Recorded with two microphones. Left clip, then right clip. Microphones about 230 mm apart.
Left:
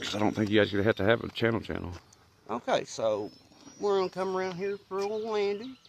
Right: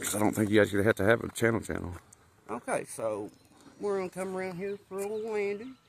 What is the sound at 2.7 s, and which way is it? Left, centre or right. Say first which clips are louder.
Speech: left 4 dB; left.